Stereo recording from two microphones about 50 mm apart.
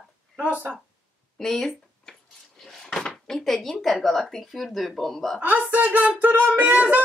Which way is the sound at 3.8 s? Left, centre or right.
Centre.